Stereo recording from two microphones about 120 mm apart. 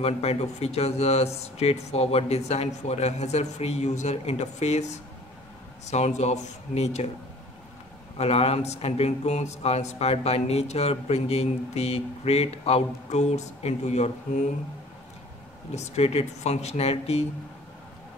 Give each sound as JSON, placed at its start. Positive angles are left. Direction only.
{"t": 0.0, "sound": "speech", "side_deg": 60}
{"t": 8.2, "sound": "speech", "side_deg": 60}
{"t": 15.7, "sound": "speech", "side_deg": 65}